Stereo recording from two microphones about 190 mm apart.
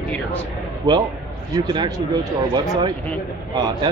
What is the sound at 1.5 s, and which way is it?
Speech, 20° right (ahead or behind).